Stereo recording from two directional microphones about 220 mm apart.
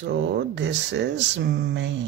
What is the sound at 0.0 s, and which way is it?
Speech, 55° right (ahead or behind).